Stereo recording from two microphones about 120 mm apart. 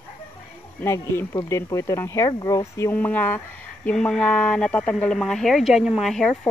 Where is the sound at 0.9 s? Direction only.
25° left (ahead or behind); by 6.5 s 5° left (ahead or behind).